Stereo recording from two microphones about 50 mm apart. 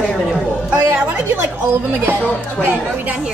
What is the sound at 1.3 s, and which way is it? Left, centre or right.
Speech, right.